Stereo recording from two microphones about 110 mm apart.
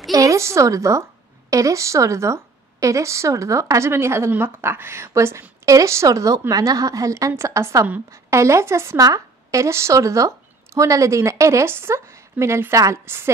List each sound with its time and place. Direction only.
0.1 s a woman's voice: 30° right (ahead or behind)